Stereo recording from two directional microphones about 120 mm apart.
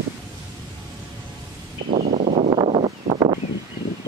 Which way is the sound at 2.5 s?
50° right (ahead or behind).